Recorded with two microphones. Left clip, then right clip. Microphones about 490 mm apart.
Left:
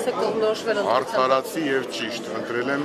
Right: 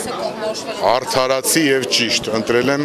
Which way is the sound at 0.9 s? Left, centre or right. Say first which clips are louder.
Right 5 dB; right.